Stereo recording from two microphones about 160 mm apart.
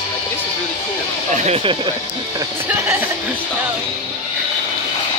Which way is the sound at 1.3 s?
40° right (ahead or behind).